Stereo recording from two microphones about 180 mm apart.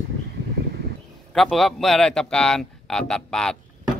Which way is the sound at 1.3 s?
Centre (ahead or behind).